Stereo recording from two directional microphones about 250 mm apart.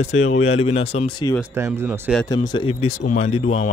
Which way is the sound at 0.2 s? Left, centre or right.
Left.